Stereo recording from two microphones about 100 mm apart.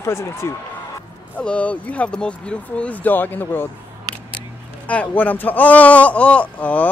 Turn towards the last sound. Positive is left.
turn(degrees=15)  # may be behind; listen again after turning